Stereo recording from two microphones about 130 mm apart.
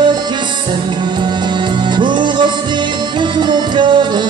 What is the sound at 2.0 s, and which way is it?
Music, 35° right (ahead or behind).